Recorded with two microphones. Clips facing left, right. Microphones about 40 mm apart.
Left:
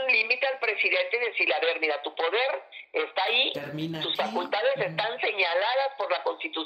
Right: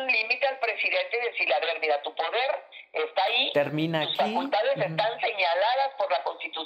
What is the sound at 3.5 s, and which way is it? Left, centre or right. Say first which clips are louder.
Speech: right 8 dB; right.